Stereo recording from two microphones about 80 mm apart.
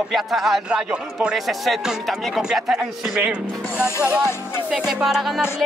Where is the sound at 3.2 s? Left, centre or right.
Centre.